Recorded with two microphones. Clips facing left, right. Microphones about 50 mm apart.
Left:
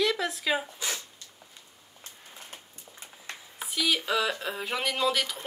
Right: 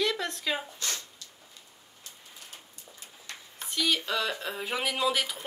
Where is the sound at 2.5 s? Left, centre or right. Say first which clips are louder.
Left 2 dB; left.